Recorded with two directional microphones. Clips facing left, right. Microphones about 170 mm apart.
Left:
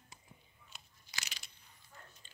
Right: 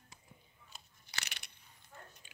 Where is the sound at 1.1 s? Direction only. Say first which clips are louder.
Right 2 dB; 60° right (ahead or behind).